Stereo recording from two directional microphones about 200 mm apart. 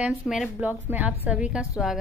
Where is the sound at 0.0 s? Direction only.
5° right (ahead or behind).